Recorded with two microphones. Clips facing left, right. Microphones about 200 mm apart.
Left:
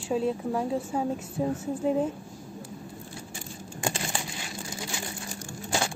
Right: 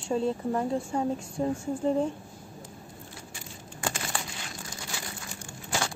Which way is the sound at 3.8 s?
25° left (ahead or behind).